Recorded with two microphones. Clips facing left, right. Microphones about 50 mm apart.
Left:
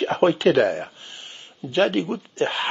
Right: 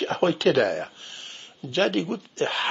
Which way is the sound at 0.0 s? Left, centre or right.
Centre.